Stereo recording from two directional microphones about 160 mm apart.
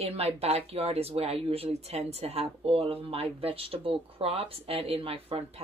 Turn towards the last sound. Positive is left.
turn(degrees=-40)  # may be behind; listen again after turning